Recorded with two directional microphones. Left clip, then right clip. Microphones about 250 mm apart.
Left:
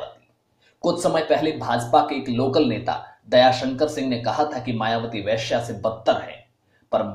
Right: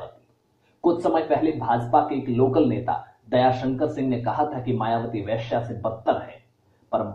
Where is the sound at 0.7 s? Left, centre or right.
Left.